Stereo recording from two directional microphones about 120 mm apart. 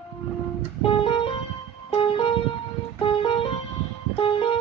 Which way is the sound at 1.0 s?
45° left (ahead or behind).